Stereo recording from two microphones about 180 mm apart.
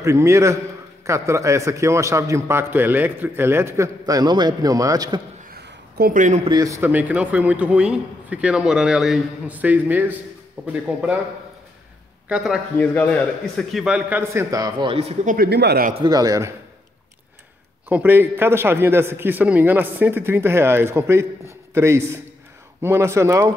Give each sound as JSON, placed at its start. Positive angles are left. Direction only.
{"t": 0.0, "sound": "a man's voice", "side_deg": -15}
{"t": 5.5, "sound": "a sound", "side_deg": -65}
{"t": 6.5, "sound": "a man's voice", "side_deg": -15}
{"t": 12.3, "sound": "a man's voice", "side_deg": -5}
{"t": 12.7, "sound": "a man's voice", "side_deg": 10}
{"t": 15.3, "sound": "speech", "side_deg": -60}
{"t": 16.0, "sound": "a man's voice", "side_deg": -20}
{"t": 17.8, "sound": "a man's voice", "side_deg": -10}